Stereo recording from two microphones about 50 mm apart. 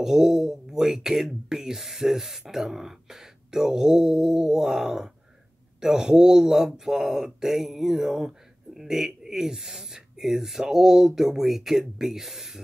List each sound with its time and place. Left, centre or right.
0.0 s speech: centre